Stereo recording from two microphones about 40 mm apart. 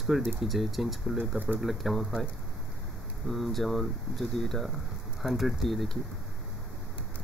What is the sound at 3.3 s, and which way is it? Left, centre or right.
Speech, centre.